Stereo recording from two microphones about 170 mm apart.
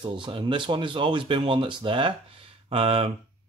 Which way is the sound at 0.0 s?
30° right (ahead or behind).